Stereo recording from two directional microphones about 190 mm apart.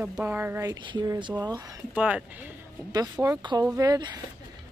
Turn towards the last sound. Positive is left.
turn(degrees=-20)  # may be behind; listen again after turning